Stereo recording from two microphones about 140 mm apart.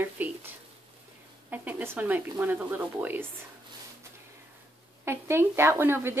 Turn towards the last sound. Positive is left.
turn(degrees=-15)  # may be behind; listen again after turning